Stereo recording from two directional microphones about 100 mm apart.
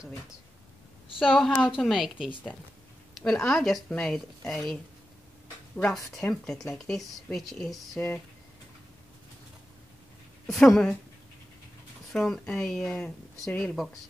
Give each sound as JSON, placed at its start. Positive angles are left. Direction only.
{"t": 1.2, "sound": "speech", "side_deg": -5}
{"t": 3.2, "sound": "speech", "side_deg": 5}
{"t": 6.1, "sound": "speech", "side_deg": 5}
{"t": 10.4, "sound": "speech", "side_deg": 5}
{"t": 12.1, "sound": "speech", "side_deg": 5}